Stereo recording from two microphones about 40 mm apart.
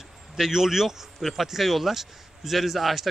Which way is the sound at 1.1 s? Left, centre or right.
Centre.